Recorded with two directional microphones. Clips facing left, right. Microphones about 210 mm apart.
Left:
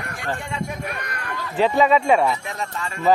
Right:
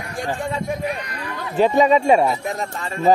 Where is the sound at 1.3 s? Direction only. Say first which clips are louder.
Right 3 dB; 45° right (ahead or behind).